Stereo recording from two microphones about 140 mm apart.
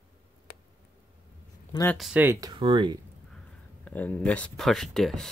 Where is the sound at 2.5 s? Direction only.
40° right (ahead or behind).